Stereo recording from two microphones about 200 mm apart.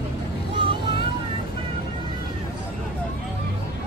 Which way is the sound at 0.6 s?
25° right (ahead or behind).